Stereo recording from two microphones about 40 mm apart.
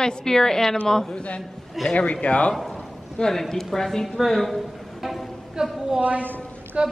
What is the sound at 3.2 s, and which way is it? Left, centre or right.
Speech, centre.